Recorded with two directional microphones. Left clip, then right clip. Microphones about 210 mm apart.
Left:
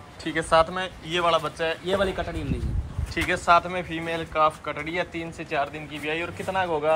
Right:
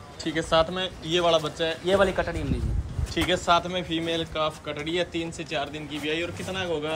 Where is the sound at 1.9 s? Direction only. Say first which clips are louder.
Right 5 dB; 25° right (ahead or behind).